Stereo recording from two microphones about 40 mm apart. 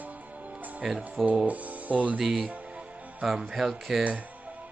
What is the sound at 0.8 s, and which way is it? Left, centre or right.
Speech, centre.